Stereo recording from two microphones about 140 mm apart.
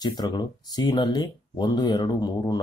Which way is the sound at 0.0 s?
30° left (ahead or behind).